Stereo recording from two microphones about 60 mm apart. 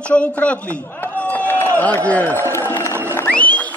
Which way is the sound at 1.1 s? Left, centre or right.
Left.